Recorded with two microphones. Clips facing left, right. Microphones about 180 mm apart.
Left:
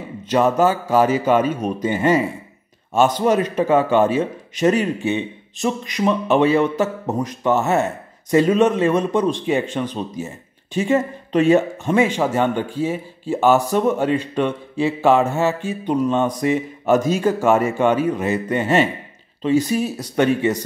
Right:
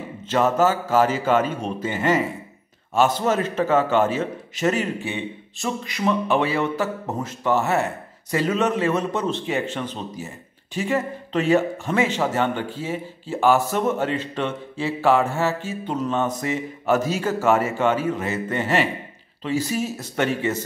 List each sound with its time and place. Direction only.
0.2 s a man's voice: 15° left (ahead or behind)